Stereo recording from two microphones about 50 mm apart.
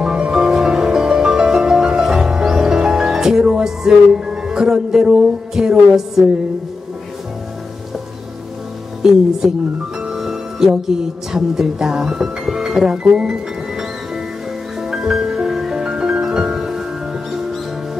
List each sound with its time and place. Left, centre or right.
0.0 s music: centre
5.5 s speech: centre
9.0 s speech: centre
10.0 s music: centre
11.3 s speech: centre
13.0 s music: centre